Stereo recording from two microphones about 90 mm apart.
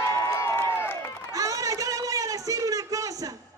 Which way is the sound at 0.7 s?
25° left (ahead or behind).